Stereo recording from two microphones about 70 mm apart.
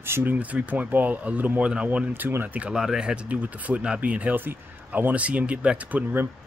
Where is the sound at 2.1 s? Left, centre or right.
Right.